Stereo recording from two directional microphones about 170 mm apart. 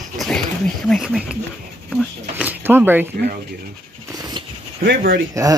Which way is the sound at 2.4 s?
10° right (ahead or behind).